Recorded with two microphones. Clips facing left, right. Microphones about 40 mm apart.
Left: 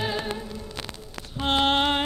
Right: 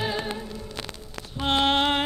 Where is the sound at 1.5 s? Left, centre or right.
Left.